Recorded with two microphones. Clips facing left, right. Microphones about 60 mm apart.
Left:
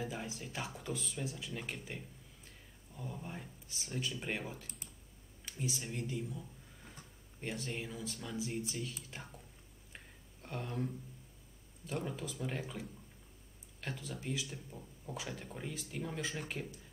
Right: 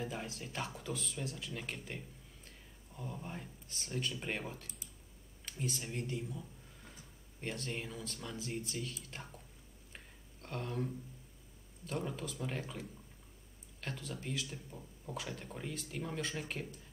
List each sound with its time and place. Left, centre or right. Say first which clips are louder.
0.0 s speech: even; centre
9.9 s a sound: left 1 dB; centre
11.8 s speech: even; centre